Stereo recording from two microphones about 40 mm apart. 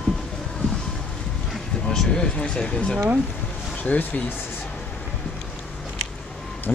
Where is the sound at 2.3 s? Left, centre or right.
Left.